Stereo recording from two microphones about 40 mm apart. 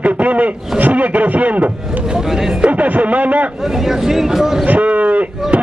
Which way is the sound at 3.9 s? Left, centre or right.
Centre.